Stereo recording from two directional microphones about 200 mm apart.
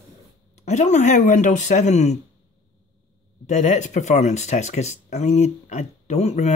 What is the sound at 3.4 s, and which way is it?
Speech, 35° left (ahead or behind).